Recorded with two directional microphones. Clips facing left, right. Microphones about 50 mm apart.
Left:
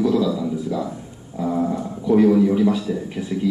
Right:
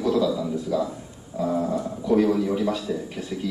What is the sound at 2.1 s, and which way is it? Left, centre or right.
A man's voice, centre.